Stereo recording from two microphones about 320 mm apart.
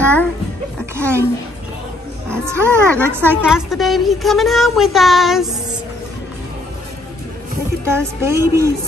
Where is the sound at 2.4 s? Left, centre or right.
Centre.